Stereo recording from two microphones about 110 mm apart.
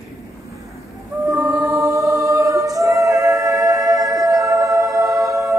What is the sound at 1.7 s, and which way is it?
A capella, 30° right (ahead or behind).